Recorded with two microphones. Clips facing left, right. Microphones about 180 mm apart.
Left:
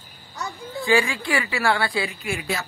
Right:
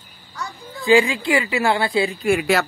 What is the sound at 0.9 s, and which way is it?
Speech, 20° right (ahead or behind).